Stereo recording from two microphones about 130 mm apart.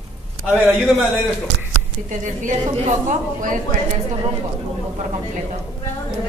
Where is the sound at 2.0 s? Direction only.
75° right (ahead or behind).